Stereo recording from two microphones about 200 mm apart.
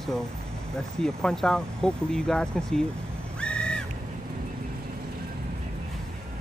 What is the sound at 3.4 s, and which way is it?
Crow, 5° left (ahead or behind).